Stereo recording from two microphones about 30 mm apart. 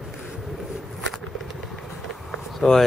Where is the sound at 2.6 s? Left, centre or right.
Left.